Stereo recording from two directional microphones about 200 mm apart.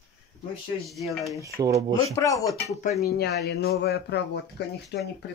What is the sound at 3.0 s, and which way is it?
Speech, 50° left (ahead or behind).